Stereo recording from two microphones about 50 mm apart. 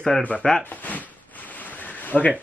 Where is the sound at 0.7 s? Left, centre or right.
Left.